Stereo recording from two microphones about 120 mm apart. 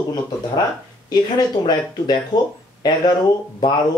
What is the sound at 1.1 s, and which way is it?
Speech, 35° left (ahead or behind).